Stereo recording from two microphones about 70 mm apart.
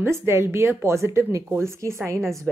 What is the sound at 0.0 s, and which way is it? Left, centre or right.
A woman's voice, right.